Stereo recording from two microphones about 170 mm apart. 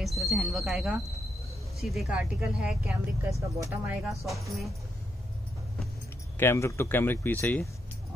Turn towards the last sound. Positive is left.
turn(degrees=10)  # may be behind; listen again after turning